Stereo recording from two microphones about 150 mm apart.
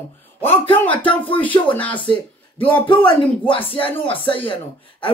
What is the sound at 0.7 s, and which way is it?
A woman's voice, 10° left (ahead or behind).